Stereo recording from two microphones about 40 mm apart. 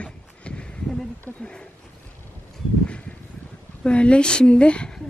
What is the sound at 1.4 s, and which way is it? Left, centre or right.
Speech, left.